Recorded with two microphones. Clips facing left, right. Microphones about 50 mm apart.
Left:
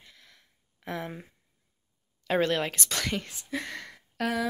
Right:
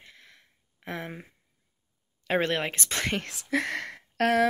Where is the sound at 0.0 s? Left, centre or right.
Right.